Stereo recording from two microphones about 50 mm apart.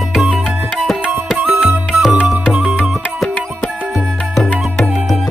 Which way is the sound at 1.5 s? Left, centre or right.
Centre.